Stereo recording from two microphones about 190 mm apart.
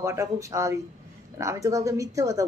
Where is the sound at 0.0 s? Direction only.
15° right (ahead or behind).